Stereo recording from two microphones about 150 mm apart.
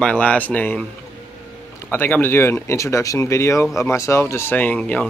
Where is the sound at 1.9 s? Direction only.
15° left (ahead or behind).